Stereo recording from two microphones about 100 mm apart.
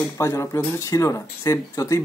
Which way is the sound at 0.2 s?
30° left (ahead or behind).